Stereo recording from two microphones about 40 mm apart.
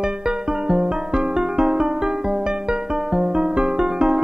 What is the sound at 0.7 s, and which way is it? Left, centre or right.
Music, centre.